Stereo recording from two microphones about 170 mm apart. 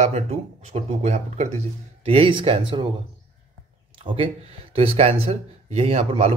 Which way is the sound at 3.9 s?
30° right (ahead or behind).